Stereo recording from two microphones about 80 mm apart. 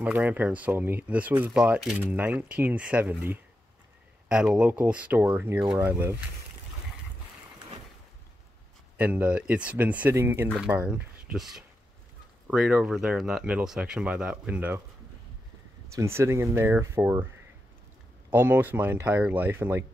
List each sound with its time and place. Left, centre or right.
0.0 s speech: centre
1.5 s speech: centre
4.3 s speech: centre
8.9 s speech: centre
10.1 s speech: right
10.7 s speech: centre
11.3 s speech: centre
15.9 s speech: right
18.3 s speech: right